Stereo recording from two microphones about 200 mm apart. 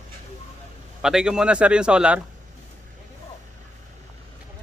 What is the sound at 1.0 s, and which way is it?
A man's voice, 5° right (ahead or behind).